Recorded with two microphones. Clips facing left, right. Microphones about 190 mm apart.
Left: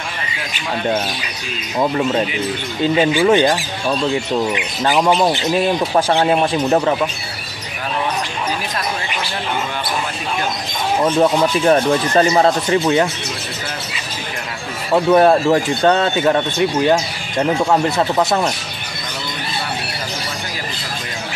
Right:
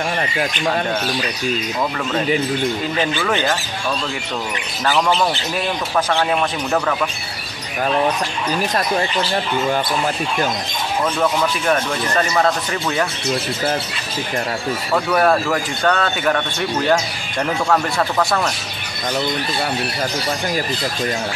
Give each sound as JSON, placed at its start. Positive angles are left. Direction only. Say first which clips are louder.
{"t": 3.0, "sound": "speech", "louder": "left 8 dB", "side_deg": 10}
{"t": 4.8, "sound": "speech", "louder": "left 3 dB", "side_deg": 15}
{"t": 6.2, "sound": "speech", "louder": "left 5 dB", "side_deg": 30}
{"t": 11.1, "sound": "speech", "louder": "left 6 dB", "side_deg": 35}
{"t": 14.9, "sound": "speech", "louder": "left 5 dB", "side_deg": 25}